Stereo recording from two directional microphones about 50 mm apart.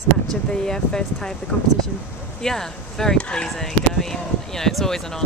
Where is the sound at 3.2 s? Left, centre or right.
Left.